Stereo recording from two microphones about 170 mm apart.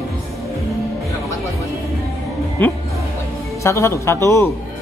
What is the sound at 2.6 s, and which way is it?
Speech, 10° left (ahead or behind).